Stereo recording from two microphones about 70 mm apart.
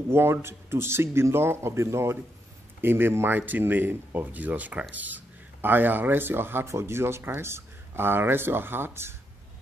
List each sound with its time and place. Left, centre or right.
0.1 s speech: right